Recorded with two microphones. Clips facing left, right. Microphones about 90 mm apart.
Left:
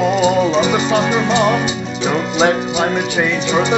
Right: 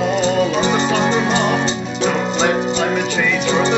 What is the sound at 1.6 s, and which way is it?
Music, 5° left (ahead or behind).